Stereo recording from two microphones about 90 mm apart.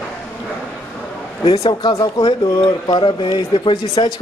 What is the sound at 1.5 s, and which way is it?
Speech, 60° left (ahead or behind).